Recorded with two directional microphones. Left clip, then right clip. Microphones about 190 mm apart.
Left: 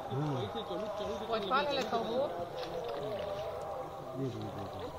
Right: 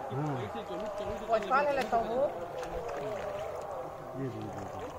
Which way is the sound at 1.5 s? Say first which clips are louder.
Right 3 dB; 45° left (ahead or behind).